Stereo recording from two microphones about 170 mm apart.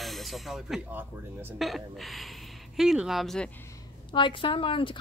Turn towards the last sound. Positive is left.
turn(degrees=30)  # may be behind; listen again after turning